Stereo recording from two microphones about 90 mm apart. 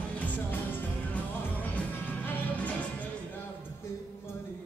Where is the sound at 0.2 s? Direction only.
20° left (ahead or behind).